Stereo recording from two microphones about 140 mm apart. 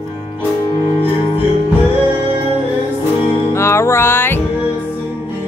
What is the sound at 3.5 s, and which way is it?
Music, 20° left (ahead or behind).